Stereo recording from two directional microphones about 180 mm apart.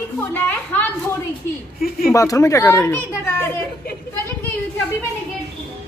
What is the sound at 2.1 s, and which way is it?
A woman's voice, 15° left (ahead or behind).